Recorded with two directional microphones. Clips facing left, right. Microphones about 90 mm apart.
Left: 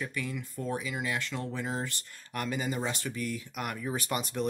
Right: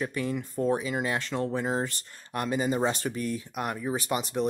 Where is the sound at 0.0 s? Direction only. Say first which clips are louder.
Right 6 dB; 35° right (ahead or behind).